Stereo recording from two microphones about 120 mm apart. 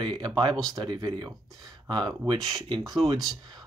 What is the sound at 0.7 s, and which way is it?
Speech, 35° right (ahead or behind).